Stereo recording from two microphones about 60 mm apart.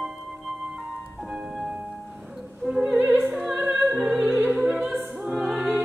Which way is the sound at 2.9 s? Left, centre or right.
Right.